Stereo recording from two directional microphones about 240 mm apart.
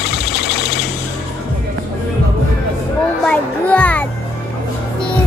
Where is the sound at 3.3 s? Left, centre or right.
Centre.